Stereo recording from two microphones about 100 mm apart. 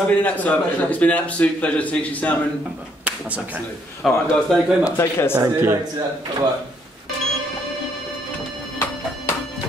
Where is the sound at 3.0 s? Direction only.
15° right (ahead or behind).